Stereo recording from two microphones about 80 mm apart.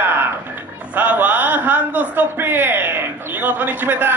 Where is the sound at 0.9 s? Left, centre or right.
Right.